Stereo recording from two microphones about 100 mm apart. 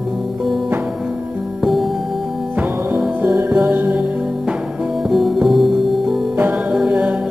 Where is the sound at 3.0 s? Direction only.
10° right (ahead or behind).